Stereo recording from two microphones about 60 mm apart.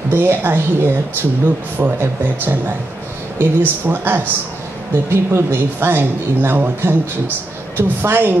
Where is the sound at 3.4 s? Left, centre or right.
Right.